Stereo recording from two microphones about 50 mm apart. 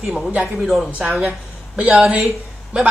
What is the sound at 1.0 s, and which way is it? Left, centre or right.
Speech, right.